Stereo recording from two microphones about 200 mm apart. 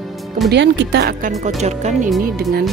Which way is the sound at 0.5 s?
60° right (ahead or behind).